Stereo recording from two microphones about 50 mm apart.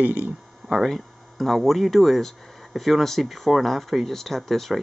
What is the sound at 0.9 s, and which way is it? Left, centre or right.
Speech, centre.